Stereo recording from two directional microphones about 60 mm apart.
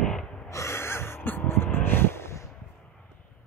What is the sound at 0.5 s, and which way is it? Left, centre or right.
Gasp, left.